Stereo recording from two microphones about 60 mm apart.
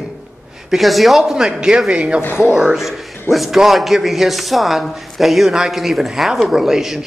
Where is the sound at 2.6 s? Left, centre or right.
Centre.